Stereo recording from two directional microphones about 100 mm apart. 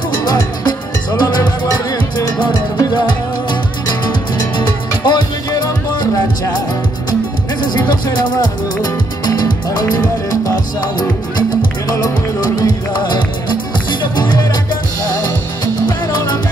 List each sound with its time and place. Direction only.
0.2 s music: 45° left (ahead or behind)
8.8 s music: 40° left (ahead or behind)